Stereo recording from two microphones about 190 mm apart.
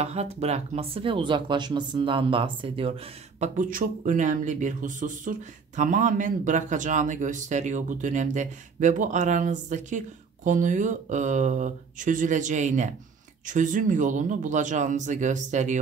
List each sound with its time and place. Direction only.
0.0 s speech: 35° right (ahead or behind)
3.3 s speech: 40° right (ahead or behind)